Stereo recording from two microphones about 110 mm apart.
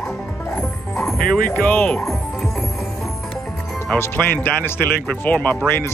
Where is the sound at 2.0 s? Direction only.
Centre (ahead or behind).